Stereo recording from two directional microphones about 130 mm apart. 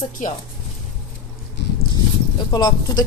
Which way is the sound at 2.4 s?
30° left (ahead or behind).